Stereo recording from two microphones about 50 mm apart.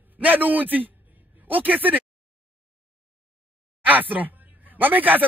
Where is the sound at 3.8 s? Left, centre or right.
Right.